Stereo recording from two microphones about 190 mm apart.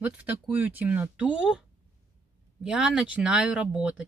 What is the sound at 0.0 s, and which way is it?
Speech, 10° right (ahead or behind).